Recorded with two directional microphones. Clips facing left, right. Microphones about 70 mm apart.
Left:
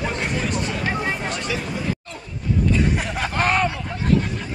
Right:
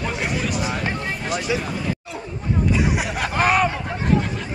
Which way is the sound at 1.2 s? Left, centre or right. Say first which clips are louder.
Right 2 dB; centre.